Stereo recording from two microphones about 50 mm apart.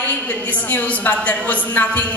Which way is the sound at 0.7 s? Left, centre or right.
Left.